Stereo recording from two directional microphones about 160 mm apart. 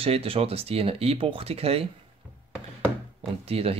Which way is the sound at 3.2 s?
35° right (ahead or behind).